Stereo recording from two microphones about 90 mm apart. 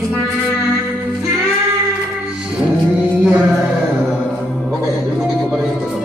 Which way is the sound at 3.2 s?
25° right (ahead or behind).